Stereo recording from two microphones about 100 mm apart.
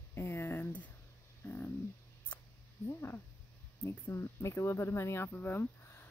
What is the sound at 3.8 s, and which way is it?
Speech, 30° left (ahead or behind).